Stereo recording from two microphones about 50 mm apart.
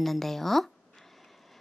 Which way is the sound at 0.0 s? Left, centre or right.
Centre.